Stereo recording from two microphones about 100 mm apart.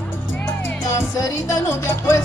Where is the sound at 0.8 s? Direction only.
30° left (ahead or behind).